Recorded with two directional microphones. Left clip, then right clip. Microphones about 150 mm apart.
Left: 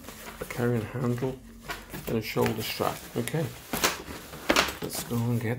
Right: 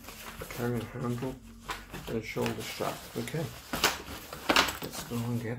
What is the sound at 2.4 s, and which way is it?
Speech, 45° left (ahead or behind).